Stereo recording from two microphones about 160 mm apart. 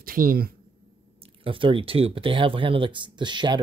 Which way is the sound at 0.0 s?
65° right (ahead or behind).